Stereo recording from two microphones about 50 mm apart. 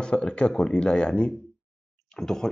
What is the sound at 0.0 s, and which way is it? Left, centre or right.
Speech, centre.